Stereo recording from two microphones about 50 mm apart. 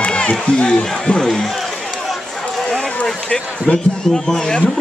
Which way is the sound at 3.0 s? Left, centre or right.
Centre.